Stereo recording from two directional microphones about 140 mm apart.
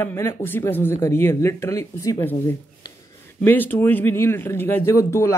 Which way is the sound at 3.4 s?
15° left (ahead or behind).